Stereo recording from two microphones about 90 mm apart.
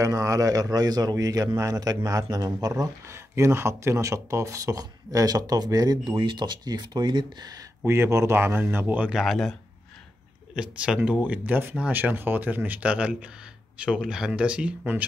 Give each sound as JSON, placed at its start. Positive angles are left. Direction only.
{"t": 0.0, "sound": "a man's voice", "side_deg": -40}
{"t": 6.0, "sound": "speech", "side_deg": -60}
{"t": 7.8, "sound": "speech", "side_deg": -30}
{"t": 9.1, "sound": "speech", "side_deg": 0}